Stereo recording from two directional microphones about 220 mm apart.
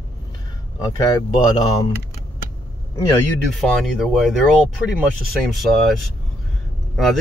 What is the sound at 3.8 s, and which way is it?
Speech, centre (ahead or behind).